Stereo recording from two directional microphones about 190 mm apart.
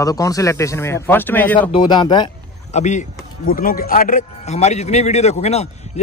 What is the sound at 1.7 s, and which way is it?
Speech, 25° left (ahead or behind).